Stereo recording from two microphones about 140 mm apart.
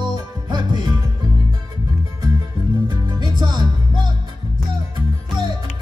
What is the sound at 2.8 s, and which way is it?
Music, 30° right (ahead or behind).